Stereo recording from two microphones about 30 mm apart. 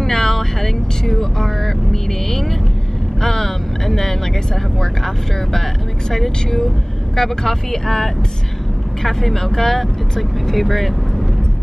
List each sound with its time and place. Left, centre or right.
0.0 s vehicle: centre
4.7 s speech: centre